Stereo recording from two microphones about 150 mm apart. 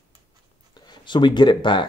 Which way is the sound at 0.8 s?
30° left (ahead or behind).